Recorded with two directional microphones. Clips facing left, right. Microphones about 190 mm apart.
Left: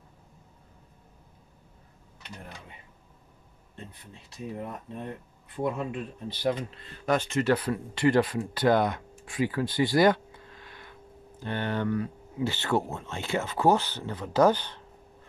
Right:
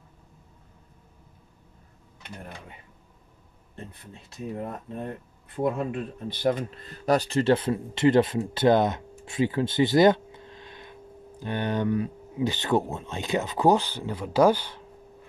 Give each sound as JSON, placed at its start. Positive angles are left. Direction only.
{"t": 4.6, "sound": "speech", "side_deg": -45}